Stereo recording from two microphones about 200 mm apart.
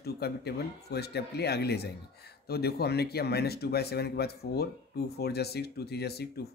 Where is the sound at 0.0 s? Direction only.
55° left (ahead or behind).